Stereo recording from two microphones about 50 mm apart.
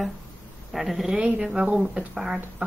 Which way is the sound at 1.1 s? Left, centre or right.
Right.